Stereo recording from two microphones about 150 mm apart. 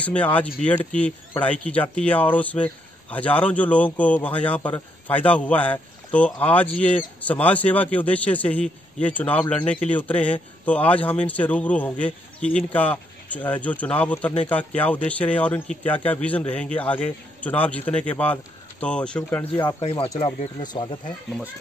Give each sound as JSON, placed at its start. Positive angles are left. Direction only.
{"t": 0.0, "sound": "speech", "side_deg": 10}
{"t": 19.8, "sound": "speech", "side_deg": 40}